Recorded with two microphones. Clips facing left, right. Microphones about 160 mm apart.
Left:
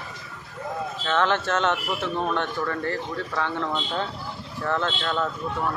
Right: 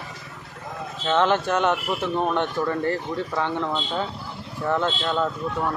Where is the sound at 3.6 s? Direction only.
5° right (ahead or behind).